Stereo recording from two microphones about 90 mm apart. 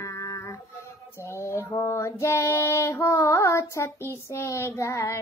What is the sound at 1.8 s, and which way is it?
Female singing, 35° left (ahead or behind).